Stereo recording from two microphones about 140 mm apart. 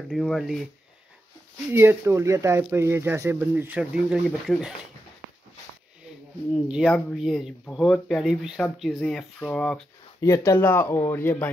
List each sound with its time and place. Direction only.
0.1 s speech: centre (ahead or behind)
1.7 s speech: 15° right (ahead or behind)
6.5 s speech: centre (ahead or behind)
10.2 s speech: 20° left (ahead or behind)